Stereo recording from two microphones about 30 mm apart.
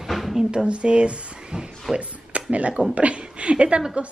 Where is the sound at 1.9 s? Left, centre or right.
Centre.